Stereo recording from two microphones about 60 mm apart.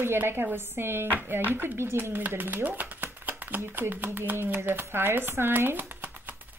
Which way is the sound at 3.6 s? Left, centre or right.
Right.